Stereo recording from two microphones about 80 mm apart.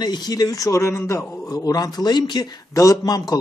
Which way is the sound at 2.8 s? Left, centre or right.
Left.